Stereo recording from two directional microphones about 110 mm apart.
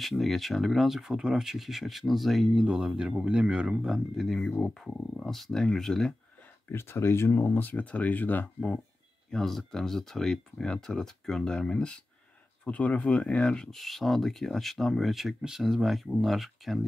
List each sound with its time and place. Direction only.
0.0 s speech: centre (ahead or behind)
6.7 s speech: 25° left (ahead or behind); by 16.8 s centre (ahead or behind)